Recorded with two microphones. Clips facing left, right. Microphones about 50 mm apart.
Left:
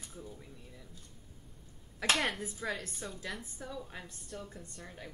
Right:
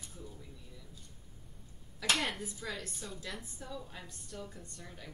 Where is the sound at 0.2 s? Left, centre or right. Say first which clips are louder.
Left 2 dB; left.